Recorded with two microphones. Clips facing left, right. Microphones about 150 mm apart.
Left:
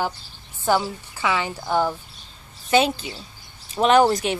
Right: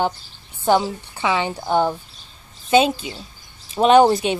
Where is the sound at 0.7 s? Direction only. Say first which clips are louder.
Right 4 dB; 20° right (ahead or behind).